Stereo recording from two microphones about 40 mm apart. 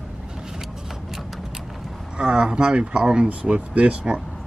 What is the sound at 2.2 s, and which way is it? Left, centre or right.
Speech, right.